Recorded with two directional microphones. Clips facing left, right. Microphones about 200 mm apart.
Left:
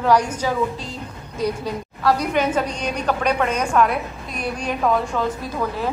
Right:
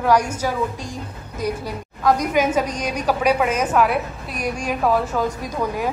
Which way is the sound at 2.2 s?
10° right (ahead or behind).